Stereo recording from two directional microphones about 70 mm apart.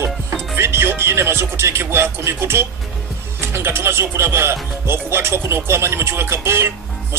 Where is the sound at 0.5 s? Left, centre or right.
Right.